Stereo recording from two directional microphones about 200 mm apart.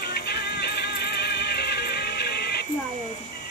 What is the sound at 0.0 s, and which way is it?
Music, 55° left (ahead or behind).